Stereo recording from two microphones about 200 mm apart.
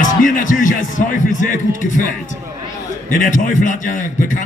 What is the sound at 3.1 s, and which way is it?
A man's voice, 40° left (ahead or behind).